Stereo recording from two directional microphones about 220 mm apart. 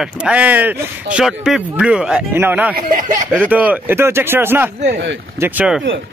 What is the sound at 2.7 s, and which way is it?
Speech, 35° right (ahead or behind).